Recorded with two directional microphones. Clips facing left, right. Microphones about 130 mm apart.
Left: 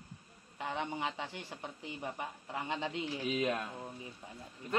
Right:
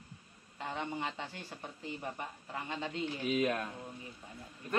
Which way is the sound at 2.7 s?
20° left (ahead or behind).